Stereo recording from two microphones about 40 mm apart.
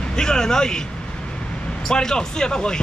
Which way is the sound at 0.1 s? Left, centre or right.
Centre.